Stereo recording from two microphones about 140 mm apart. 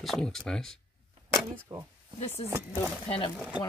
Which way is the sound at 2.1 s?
50° left (ahead or behind).